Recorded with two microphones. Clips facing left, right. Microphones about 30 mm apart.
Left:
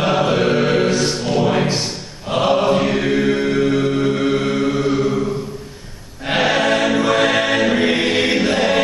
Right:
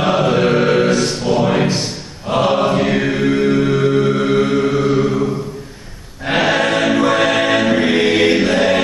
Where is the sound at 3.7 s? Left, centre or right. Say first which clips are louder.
Right 3 dB; centre.